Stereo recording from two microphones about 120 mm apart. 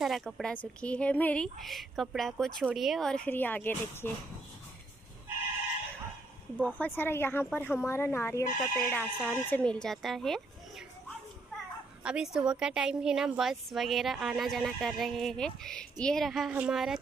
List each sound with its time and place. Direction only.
0.0 s a woman's voice: centre (ahead or behind)
3.3 s a woman's voice: 15° left (ahead or behind)
6.6 s a woman's voice: 15° left (ahead or behind)
12.0 s a woman's voice: 10° right (ahead or behind)
16.4 s a woman's voice: 10° right (ahead or behind)